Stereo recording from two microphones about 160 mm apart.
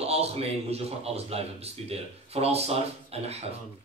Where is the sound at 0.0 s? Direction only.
40° right (ahead or behind).